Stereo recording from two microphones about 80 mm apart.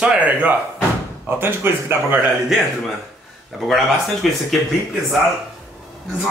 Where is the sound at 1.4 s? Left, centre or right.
Right.